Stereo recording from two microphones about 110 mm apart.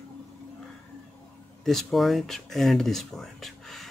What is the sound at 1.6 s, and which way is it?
Speech, centre (ahead or behind).